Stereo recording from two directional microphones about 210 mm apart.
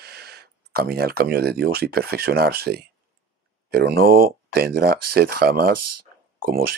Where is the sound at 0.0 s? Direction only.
50° right (ahead or behind).